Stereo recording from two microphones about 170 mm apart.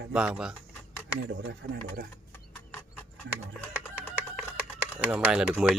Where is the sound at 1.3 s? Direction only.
85° right.